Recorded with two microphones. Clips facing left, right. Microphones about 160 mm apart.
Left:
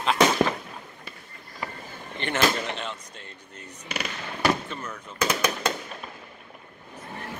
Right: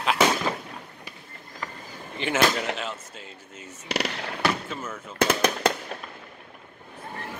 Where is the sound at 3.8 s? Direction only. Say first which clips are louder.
Right 5 dB; 75° right (ahead or behind).